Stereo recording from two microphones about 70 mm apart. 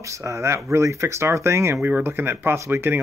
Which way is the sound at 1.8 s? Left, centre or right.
Right.